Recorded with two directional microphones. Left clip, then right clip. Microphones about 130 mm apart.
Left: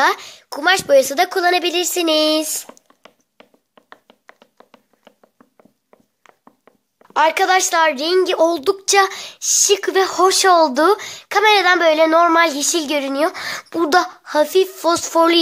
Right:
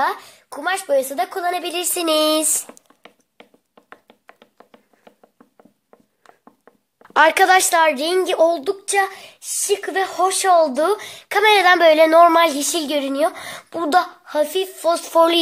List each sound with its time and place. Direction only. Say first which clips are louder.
0.0 s speech: left 5 dB; 40° left (ahead or behind)
1.6 s child singing: left 5 dB; 30° left (ahead or behind)
2.4 s speech: right 2 dB; centre (ahead or behind)
4.4 s a sound: even; 20° left (ahead or behind)
7.0 s speech: right 2 dB; 10° right (ahead or behind); by 8.5 s 10° left (ahead or behind)
8.6 s a woman's voice: left 5 dB; 50° left (ahead or behind)
11.0 s child singing: left 2 dB; 25° left (ahead or behind)